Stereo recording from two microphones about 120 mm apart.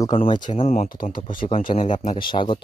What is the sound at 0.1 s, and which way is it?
Speech, 45° left (ahead or behind).